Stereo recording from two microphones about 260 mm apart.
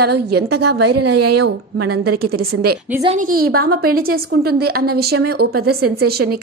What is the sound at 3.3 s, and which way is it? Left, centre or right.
A woman's voice, right.